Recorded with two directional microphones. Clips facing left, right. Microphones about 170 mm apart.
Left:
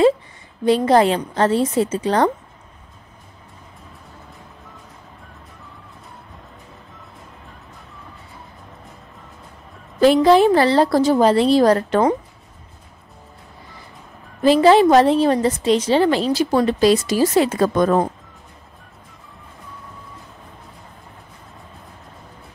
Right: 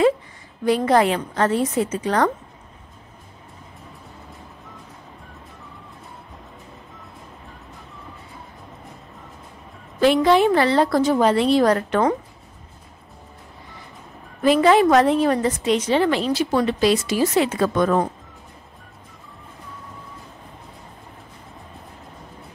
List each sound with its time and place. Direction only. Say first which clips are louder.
0.7 s a woman's voice: left 3 dB; 30° left (ahead or behind)
9.9 s a woman's voice: left 3 dB; 35° left (ahead or behind)
14.4 s a woman's voice: left 3 dB; 30° left (ahead or behind)